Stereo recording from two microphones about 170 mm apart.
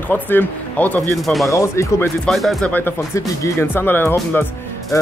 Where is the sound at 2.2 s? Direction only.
Centre (ahead or behind).